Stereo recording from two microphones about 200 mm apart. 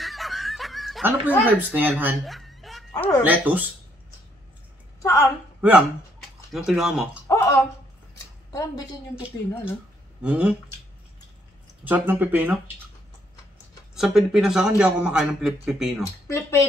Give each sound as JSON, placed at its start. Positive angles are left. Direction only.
{"t": 0.0, "sound": "snicker", "side_deg": 0}
{"t": 1.4, "sound": "a woman's voice", "side_deg": -10}
{"t": 2.9, "sound": "speech", "side_deg": 20}
{"t": 3.2, "sound": "speech", "side_deg": -10}
{"t": 5.0, "sound": "speech", "side_deg": 15}
{"t": 5.6, "sound": "a man's voice", "side_deg": -5}
{"t": 7.2, "sound": "a sound", "side_deg": 15}
{"t": 10.2, "sound": "speech", "side_deg": -5}
{"t": 11.8, "sound": "speech", "side_deg": -10}
{"t": 13.9, "sound": "a man's voice", "side_deg": 0}
{"t": 16.0, "sound": "speech", "side_deg": 15}